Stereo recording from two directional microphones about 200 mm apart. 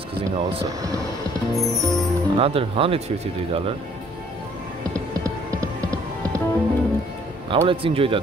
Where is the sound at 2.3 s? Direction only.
30° right (ahead or behind).